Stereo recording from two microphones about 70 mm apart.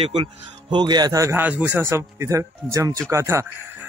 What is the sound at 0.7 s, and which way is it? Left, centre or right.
Speech, right.